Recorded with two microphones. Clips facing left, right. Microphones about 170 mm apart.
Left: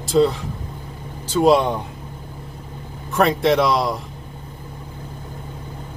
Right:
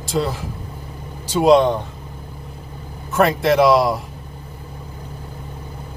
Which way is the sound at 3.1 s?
Centre (ahead or behind).